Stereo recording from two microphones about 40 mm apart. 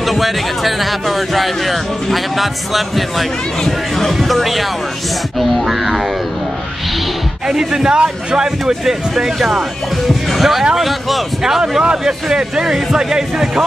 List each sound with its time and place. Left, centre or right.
0.0 s speech: centre
7.4 s speech: centre
12.0 s speech: centre